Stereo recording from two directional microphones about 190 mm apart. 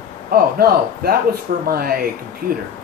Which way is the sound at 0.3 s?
50° right (ahead or behind).